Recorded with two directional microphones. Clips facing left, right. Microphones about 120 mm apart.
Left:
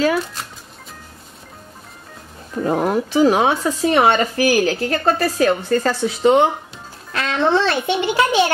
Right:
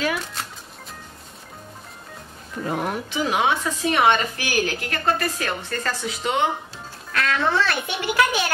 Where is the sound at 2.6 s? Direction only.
35° left (ahead or behind).